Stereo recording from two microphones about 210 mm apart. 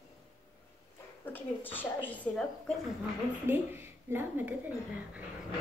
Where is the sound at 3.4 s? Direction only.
10° right (ahead or behind).